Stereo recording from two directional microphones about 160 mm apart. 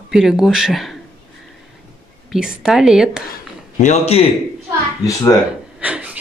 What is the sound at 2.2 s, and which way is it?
A woman's voice, 5° right (ahead or behind).